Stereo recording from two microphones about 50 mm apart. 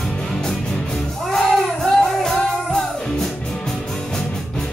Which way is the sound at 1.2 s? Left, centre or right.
Centre.